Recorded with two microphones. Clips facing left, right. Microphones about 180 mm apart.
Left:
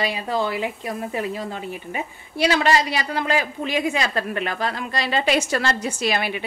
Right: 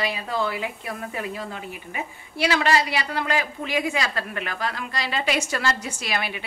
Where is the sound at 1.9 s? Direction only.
25° left (ahead or behind).